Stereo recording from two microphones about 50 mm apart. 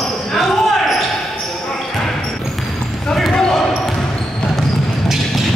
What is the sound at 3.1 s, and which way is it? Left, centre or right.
Basketball bounce, centre.